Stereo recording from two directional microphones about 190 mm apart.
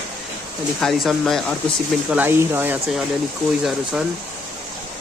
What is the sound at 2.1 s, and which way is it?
Speech, 10° right (ahead or behind).